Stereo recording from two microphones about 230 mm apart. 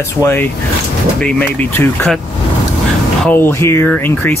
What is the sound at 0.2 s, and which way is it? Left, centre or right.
Speech, centre.